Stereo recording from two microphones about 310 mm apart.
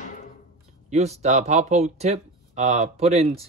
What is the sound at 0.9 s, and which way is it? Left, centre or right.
Speech, right.